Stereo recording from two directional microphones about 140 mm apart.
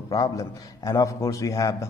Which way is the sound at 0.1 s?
25° left (ahead or behind).